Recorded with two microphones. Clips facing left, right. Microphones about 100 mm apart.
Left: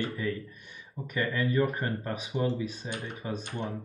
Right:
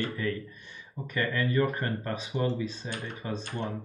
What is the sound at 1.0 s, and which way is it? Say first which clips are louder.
Speech: even; 10° left (ahead or behind).